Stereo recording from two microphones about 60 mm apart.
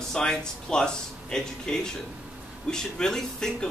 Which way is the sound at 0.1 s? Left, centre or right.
Centre.